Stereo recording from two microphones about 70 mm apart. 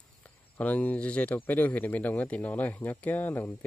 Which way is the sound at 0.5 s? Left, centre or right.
Left.